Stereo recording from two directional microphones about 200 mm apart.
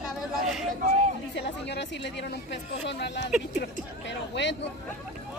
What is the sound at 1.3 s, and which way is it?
Speech, 60° left (ahead or behind).